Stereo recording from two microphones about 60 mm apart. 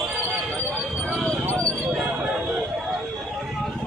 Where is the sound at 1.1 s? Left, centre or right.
Centre.